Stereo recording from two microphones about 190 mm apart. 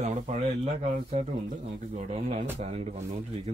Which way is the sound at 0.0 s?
35° right (ahead or behind).